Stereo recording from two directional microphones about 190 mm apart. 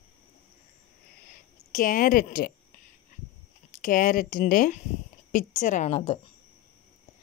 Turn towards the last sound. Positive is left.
turn(degrees=35)  # may be behind; listen again after turning